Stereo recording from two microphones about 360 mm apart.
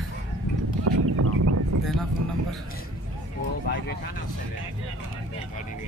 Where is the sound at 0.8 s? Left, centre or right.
Right.